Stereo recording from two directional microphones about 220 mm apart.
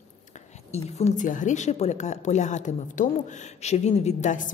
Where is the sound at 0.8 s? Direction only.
30° left (ahead or behind).